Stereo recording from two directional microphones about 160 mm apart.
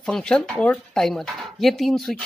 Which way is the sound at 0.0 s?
5° left (ahead or behind).